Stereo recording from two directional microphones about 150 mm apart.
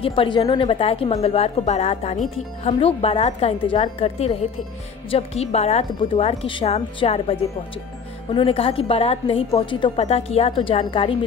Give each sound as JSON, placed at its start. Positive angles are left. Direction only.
{"t": 0.0, "sound": "a woman's voice", "side_deg": 35}
{"t": 9.9, "sound": "a woman's voice", "side_deg": 45}